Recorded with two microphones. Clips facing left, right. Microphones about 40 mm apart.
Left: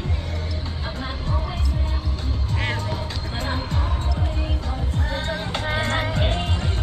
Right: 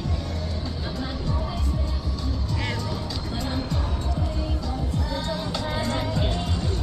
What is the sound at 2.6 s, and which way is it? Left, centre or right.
Music, left.